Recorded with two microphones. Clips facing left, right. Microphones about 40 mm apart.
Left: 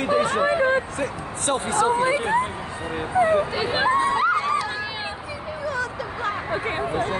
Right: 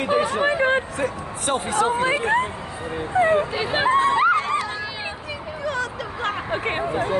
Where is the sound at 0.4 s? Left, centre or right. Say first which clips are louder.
Even; right.